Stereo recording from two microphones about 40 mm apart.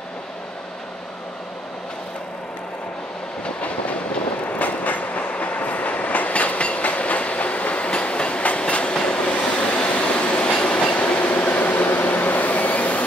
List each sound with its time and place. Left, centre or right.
3.4 s train: left